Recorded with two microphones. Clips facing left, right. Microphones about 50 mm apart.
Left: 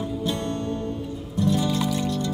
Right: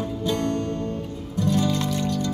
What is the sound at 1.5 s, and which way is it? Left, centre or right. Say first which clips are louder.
Music: right 3 dB; centre.